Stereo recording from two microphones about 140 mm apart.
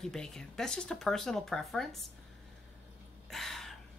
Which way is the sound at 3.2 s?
Centre (ahead or behind).